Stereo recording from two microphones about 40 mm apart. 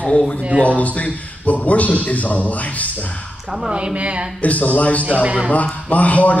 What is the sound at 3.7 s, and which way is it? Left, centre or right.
Speech, right.